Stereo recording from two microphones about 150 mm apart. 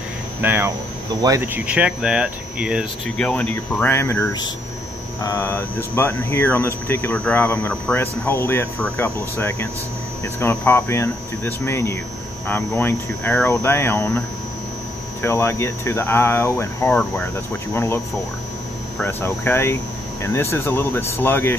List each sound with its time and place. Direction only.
0.4 s speech: 15° right (ahead or behind)
3.2 s speech: 10° left (ahead or behind)
15.2 s speech: 20° left (ahead or behind)
19.0 s speech: 15° left (ahead or behind)